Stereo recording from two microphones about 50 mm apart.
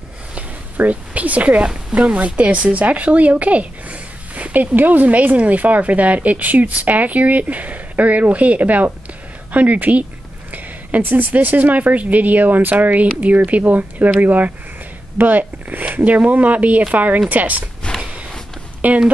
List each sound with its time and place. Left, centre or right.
0.7 s speech: right
17.9 s a sound: left
18.8 s speech: right